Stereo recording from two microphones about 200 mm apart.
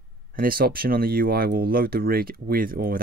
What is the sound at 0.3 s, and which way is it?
Speech, 45° right (ahead or behind).